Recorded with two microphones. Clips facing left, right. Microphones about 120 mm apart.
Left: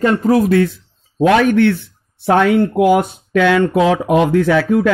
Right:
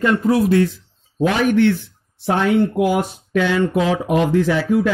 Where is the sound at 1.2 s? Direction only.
90° left.